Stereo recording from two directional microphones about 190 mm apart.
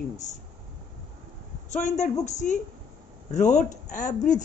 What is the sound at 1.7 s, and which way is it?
Speech, 40° left (ahead or behind).